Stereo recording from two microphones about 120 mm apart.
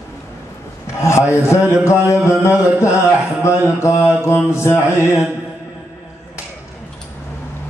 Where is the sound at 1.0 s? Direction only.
25° left (ahead or behind).